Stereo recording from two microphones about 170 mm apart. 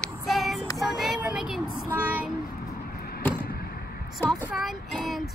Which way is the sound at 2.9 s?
65° left (ahead or behind).